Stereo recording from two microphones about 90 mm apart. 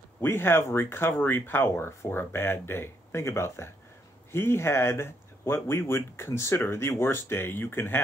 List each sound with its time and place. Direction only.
0.2 s speech: 25° left (ahead or behind)